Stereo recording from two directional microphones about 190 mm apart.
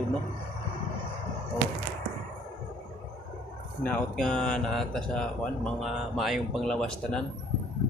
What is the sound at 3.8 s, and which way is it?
Speech, 5° left (ahead or behind).